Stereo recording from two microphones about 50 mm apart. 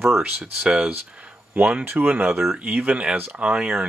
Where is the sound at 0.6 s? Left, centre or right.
Centre.